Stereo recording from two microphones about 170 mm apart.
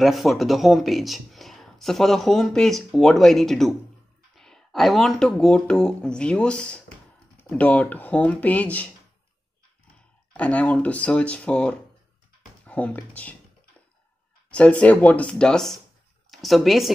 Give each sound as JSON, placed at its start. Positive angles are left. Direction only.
{"t": 0.0, "sound": "speech", "side_deg": 0}
{"t": 10.3, "sound": "speech", "side_deg": 10}
{"t": 14.5, "sound": "speech", "side_deg": 5}